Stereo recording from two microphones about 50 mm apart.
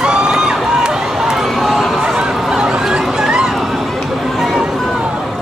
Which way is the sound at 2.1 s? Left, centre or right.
Centre.